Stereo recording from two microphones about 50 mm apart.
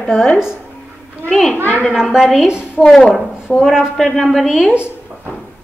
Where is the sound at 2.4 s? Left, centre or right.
Centre.